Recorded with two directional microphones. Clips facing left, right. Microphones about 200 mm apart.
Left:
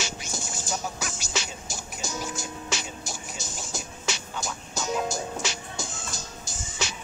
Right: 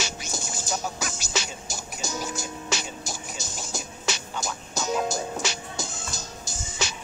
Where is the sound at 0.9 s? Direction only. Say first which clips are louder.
Right 2 dB; 40° right (ahead or behind).